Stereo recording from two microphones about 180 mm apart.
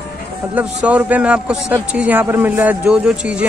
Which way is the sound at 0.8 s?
10° right (ahead or behind).